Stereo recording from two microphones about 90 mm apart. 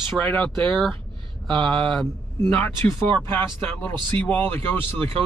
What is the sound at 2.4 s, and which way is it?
Speech, 25° left (ahead or behind).